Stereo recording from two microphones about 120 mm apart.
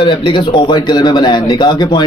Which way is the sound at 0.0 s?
40° left (ahead or behind).